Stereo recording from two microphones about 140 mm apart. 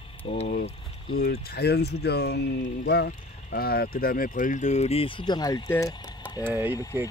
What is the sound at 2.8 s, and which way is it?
Speech, 90° left.